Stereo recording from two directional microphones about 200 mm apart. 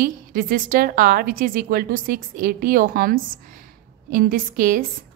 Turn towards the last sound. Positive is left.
turn(degrees=-45)  # may be behind; listen again after turning